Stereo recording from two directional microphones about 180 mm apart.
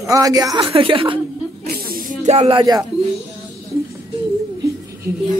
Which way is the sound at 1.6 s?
55° right (ahead or behind).